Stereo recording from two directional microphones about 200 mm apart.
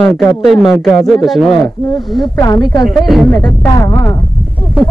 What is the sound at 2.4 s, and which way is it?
Speech, 20° left (ahead or behind).